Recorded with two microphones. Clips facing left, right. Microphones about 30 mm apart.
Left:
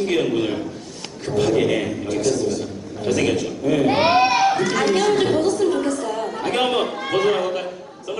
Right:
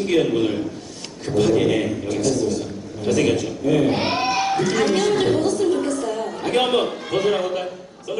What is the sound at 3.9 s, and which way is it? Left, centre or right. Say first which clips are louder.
Speech: left 5 dB; left.